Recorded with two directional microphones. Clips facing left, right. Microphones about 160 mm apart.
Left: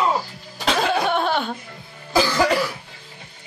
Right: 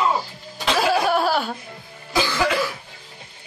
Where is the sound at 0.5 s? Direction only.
5° right (ahead or behind).